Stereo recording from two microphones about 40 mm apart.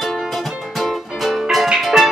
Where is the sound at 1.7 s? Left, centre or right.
Centre.